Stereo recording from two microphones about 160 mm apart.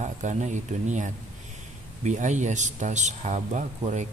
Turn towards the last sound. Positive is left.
turn(degrees=-50)  # may be behind; listen again after turning